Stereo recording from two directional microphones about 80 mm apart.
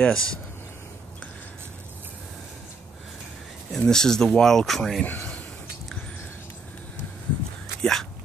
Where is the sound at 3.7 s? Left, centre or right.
Centre.